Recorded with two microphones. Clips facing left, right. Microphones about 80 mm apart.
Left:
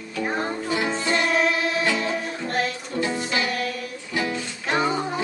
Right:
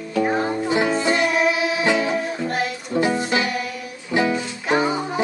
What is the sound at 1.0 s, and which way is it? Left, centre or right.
Music, right.